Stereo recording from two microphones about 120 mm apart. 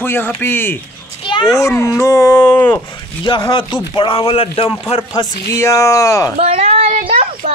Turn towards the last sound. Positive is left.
turn(degrees=-90)